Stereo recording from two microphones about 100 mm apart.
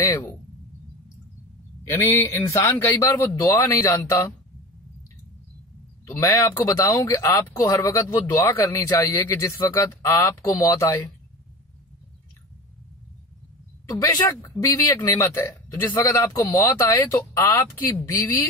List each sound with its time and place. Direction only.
0.0 s a sound: 40° left (ahead or behind)
1.9 s a man's voice: 30° left (ahead or behind)
6.0 s a man's voice: 25° left (ahead or behind)
13.8 s a man's voice: 35° left (ahead or behind)